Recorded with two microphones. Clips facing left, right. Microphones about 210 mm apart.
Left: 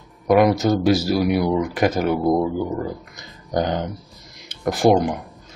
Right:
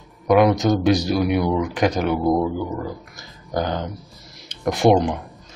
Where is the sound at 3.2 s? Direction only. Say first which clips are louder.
Left 2 dB; 15° left (ahead or behind).